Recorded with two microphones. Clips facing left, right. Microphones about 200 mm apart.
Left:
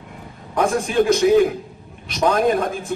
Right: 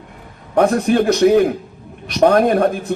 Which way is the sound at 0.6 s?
55° right (ahead or behind).